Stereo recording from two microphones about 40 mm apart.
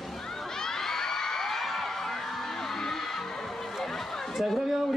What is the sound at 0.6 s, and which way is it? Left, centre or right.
Crowd, centre.